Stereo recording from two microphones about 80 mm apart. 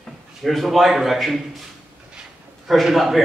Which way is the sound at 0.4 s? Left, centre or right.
Centre.